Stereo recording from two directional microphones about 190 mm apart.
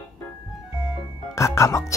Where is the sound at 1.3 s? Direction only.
15° left (ahead or behind).